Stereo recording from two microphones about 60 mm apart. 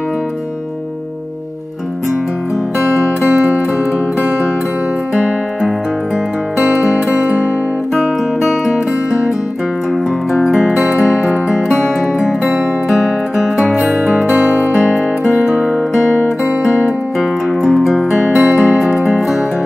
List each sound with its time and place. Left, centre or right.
2.8 s music: right
5.1 s music: centre
7.9 s music: centre
10.3 s music: centre
14.4 s music: right
14.7 s music: centre
17.6 s music: centre
18.3 s music: centre
18.8 s music: centre